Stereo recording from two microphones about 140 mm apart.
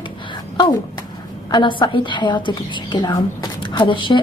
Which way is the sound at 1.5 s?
35° left (ahead or behind).